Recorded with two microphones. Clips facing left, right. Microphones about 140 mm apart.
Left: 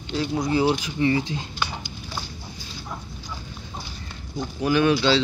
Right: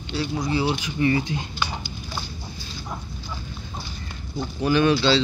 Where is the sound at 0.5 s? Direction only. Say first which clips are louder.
Left 4 dB; 45° left (ahead or behind).